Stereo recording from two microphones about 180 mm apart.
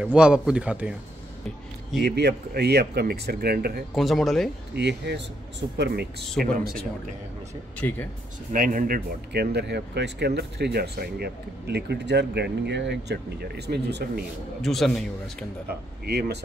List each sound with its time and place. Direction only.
0.0 s a man's voice: 5° right (ahead or behind)
2.0 s speech: 65° right (ahead or behind)
3.9 s a man's voice: centre (ahead or behind)
4.7 s speech: 70° right (ahead or behind)
6.4 s speech: 55° right (ahead or behind)
7.8 s speech: 10° left (ahead or behind)
8.5 s speech: 50° right (ahead or behind); by 14.2 s 65° right (ahead or behind)
14.6 s a man's voice: centre (ahead or behind)
16.1 s speech: 65° right (ahead or behind)